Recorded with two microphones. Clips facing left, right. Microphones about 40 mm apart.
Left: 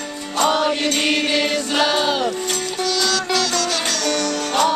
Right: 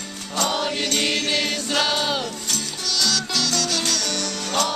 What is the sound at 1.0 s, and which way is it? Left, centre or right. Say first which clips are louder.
Music: left 4 dB; left.